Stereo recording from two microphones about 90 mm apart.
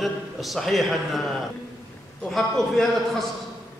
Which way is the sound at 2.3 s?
5° left (ahead or behind).